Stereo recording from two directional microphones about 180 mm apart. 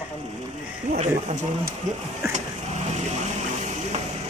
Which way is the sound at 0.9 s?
40° right (ahead or behind).